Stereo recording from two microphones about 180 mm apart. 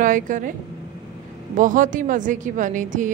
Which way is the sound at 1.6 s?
45° right (ahead or behind).